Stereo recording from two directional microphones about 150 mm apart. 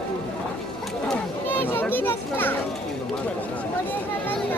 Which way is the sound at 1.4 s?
15° left (ahead or behind).